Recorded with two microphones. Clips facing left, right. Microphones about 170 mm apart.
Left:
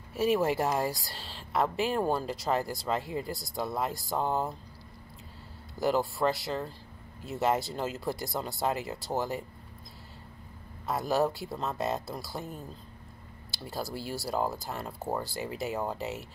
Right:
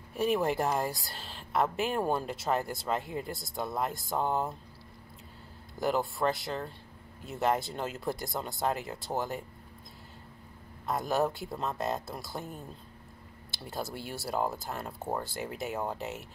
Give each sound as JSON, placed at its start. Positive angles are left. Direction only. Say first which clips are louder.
{"t": 0.1, "sound": "speech", "louder": "left 2 dB", "side_deg": 0}
{"t": 5.8, "sound": "speech", "louder": "left 2 dB", "side_deg": 0}
{"t": 10.9, "sound": "speech", "louder": "left 1 dB", "side_deg": 0}